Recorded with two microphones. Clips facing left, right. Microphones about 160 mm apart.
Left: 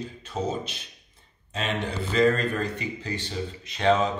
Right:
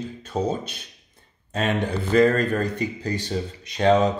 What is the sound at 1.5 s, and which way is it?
Speech, 50° right (ahead or behind).